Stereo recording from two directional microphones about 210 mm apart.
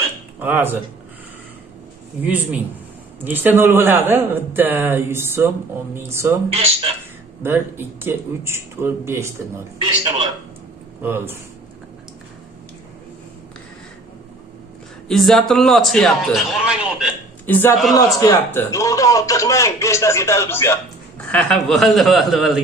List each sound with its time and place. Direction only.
0.4 s speech: 10° right (ahead or behind)
2.2 s a man's voice: 5° right (ahead or behind)
6.5 s a man's voice: 30° right (ahead or behind)
7.4 s a man's voice: 10° right (ahead or behind)
11.0 s a man's voice: 10° right (ahead or behind)
15.0 s a man's voice: centre (ahead or behind)
17.5 s a man's voice: 10° left (ahead or behind)